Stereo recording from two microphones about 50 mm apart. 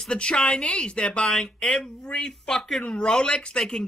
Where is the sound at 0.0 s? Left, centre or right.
Centre.